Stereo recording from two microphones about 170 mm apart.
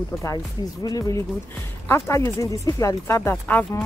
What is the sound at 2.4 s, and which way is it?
Speech, 20° left (ahead or behind).